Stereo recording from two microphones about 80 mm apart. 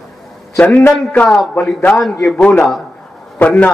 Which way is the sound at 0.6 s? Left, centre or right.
Centre.